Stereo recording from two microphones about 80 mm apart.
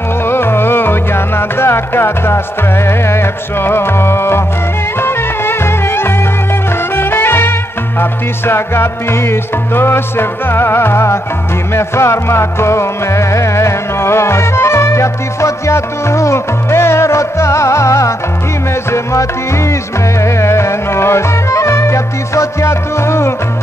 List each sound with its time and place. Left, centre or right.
0.3 s music: left
20.2 s music: left